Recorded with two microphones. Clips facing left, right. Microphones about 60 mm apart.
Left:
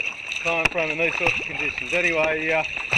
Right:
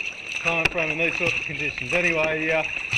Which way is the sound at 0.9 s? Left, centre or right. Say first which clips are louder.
Left 2 dB; centre.